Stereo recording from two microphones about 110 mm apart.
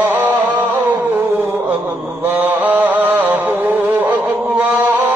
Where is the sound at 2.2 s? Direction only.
15° right (ahead or behind).